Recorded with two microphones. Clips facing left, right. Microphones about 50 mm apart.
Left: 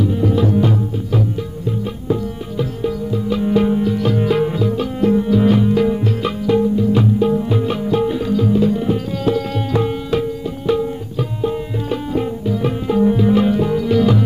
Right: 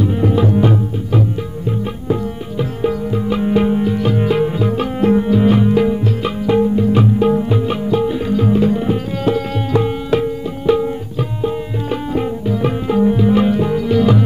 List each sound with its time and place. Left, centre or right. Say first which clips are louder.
0.0 s tabla: right 1 dB; right
2.8 s music: right 5 dB; right; by 4.5 s centre
4.6 s music: right 1 dB; right
5.3 s music: right 1 dB; right
5.9 s music: right 1 dB; centre
6.4 s music: right 1 dB; right
6.7 s music: right 1 dB; right
7.4 s music: right 1 dB; centre
7.9 s music: right 1 dB; centre
8.3 s music: right 2 dB; right
9.7 s music: right 4 dB; centre
12.1 s music: right 1 dB; right
13.0 s tabla: right 1 dB; centre
13.8 s music: right 2 dB; right